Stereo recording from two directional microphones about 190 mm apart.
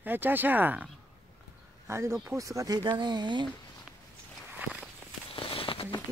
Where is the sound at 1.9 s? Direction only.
15° right (ahead or behind).